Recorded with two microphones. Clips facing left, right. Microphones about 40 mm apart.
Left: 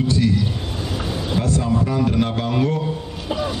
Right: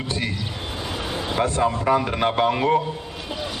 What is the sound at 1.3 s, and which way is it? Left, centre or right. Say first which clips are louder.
A man's voice: even; right.